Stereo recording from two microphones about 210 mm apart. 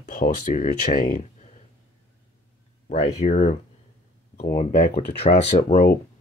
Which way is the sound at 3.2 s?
35° left (ahead or behind).